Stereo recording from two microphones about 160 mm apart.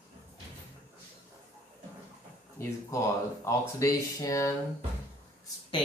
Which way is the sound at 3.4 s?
20° left (ahead or behind).